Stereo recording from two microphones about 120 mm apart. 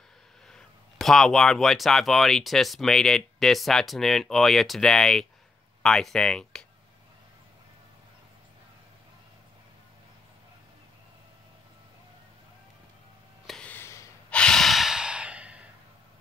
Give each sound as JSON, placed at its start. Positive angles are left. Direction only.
{"t": 0.5, "sound": "speech", "side_deg": 5}
{"t": 13.5, "sound": "a sound", "side_deg": 10}
{"t": 13.7, "sound": "gasp", "side_deg": 25}
{"t": 14.3, "sound": "breathing", "side_deg": 5}